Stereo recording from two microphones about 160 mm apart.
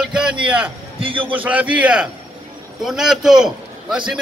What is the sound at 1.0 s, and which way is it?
Speech, 35° right (ahead or behind).